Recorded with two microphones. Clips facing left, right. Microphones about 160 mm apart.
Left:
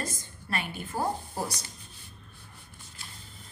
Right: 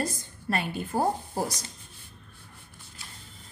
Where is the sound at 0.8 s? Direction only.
35° right (ahead or behind).